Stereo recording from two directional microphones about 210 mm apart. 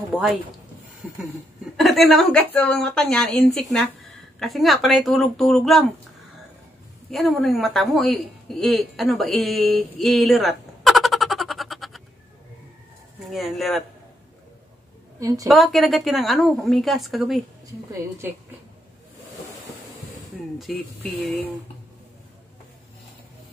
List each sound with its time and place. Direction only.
0.1 s speech: 5° right (ahead or behind)
1.0 s a sound: 5° right (ahead or behind)
1.8 s a woman's voice: centre (ahead or behind)
7.1 s speech: centre (ahead or behind)
13.2 s a woman's voice: centre (ahead or behind)
15.1 s a woman's voice: 15° right (ahead or behind)
15.4 s a woman's voice: centre (ahead or behind)
20.7 s a woman's voice: centre (ahead or behind)